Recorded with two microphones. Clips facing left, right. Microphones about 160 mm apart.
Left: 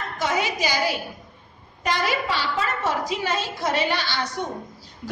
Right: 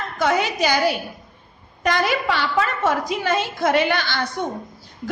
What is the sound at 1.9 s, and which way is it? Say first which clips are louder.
A woman's voice: right 4 dB; 60° right (ahead or behind).